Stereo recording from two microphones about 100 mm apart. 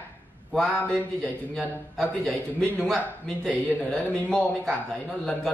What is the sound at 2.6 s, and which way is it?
A man's voice, 5° left (ahead or behind).